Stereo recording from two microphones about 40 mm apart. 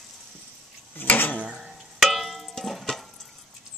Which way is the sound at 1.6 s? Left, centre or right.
Centre.